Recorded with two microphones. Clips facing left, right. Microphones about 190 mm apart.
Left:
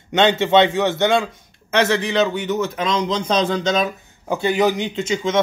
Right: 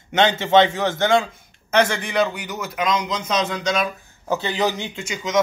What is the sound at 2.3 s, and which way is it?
Speech, 25° left (ahead or behind).